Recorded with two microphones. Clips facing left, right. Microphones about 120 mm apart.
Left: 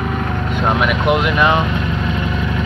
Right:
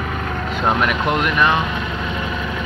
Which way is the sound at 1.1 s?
15° left (ahead or behind).